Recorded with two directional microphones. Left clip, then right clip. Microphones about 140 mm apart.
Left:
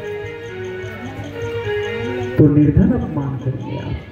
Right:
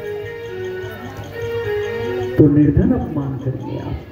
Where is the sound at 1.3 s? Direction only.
15° right (ahead or behind).